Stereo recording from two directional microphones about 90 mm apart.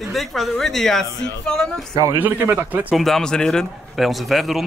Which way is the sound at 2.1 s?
20° right (ahead or behind).